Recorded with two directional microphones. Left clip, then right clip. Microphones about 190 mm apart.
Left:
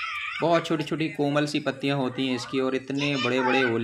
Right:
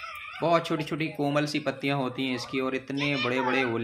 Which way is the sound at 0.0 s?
50° right (ahead or behind).